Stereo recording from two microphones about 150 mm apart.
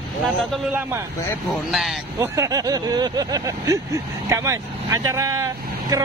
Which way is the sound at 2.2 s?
20° right (ahead or behind).